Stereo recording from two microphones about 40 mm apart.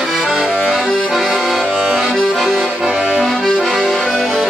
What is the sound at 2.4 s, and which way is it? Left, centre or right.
Accordion, centre.